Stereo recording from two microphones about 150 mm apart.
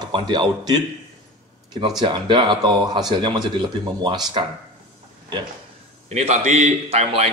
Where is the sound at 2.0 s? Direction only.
30° right (ahead or behind).